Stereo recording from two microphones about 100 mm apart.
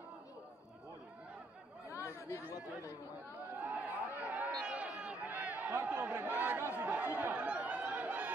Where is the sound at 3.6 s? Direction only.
15° right (ahead or behind).